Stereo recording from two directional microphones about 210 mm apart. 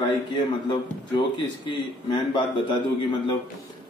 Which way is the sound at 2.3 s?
20° left (ahead or behind).